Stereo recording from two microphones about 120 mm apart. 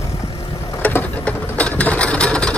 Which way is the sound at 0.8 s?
10° left (ahead or behind).